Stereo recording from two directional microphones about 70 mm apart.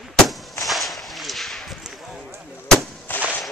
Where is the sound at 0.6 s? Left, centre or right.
Centre.